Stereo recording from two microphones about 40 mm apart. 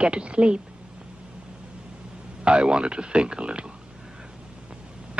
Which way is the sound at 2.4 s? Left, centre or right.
Right.